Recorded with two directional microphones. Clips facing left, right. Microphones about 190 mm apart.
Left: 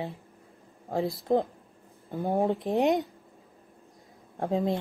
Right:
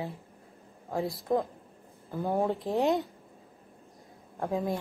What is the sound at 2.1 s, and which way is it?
Speech, 15° left (ahead or behind).